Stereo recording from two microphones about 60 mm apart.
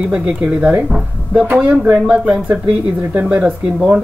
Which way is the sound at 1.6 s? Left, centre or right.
Right.